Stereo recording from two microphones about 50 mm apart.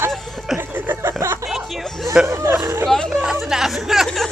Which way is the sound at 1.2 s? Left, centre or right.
Right.